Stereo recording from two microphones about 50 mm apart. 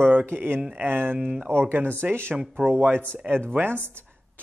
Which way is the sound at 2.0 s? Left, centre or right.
Right.